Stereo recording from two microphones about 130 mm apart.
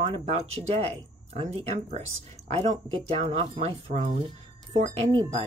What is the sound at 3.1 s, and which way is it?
Speech, 50° right (ahead or behind).